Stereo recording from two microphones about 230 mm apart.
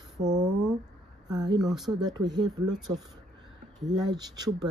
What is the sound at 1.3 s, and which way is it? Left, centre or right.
Speech, centre.